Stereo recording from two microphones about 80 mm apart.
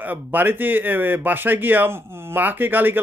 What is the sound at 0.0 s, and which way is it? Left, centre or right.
Speech, right.